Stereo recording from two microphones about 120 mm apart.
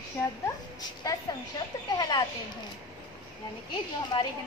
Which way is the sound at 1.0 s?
30° left (ahead or behind).